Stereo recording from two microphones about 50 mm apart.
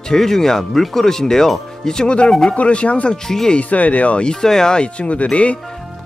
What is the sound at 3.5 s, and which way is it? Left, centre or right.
Speech, left.